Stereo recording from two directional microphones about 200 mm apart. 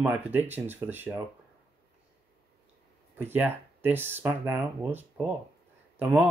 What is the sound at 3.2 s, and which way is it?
Speech, 10° right (ahead or behind).